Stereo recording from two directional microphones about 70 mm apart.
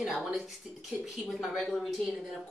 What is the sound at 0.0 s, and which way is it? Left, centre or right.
Speech, centre.